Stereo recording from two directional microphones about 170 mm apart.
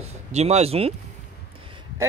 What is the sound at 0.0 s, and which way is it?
Speech, 40° right (ahead or behind).